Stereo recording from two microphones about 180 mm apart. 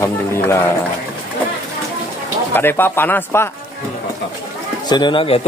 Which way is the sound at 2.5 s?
10° left (ahead or behind).